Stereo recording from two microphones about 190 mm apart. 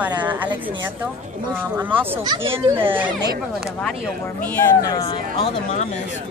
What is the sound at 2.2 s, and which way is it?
Speech, 25° right (ahead or behind).